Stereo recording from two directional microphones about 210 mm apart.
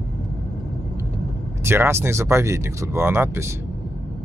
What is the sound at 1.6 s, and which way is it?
Speech, 10° right (ahead or behind).